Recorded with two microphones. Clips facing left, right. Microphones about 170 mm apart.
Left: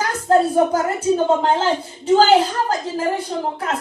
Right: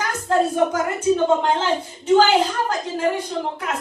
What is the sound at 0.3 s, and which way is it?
A child's voice, 35° left (ahead or behind).